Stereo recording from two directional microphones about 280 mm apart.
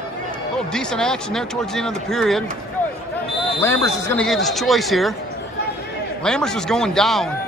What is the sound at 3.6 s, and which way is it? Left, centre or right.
Speech, centre.